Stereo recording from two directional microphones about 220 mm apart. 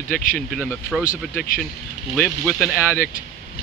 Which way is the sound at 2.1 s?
5° left (ahead or behind).